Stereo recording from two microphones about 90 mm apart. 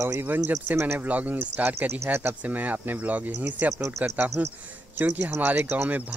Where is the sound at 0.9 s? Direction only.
15° right (ahead or behind).